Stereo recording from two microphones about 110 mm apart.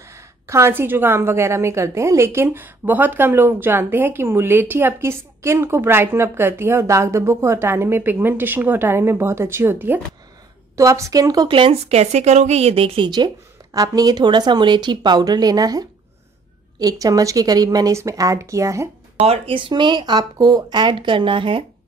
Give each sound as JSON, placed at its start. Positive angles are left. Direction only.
{"t": 0.0, "sound": "a woman's voice", "side_deg": -25}
{"t": 11.5, "sound": "speech", "side_deg": -50}
{"t": 11.9, "sound": "a woman's voice", "side_deg": -80}
{"t": 13.7, "sound": "a woman's voice", "side_deg": -35}
{"t": 19.1, "sound": "speech", "side_deg": -65}